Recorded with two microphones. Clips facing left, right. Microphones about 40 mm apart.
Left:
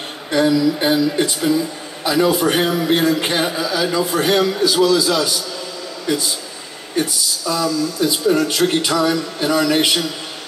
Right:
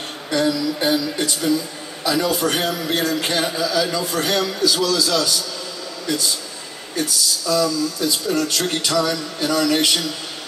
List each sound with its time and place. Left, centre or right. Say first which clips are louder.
0.3 s a man's voice: left 5 dB; centre